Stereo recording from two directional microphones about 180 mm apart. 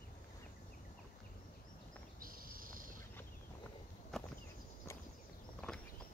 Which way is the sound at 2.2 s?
50° right (ahead or behind).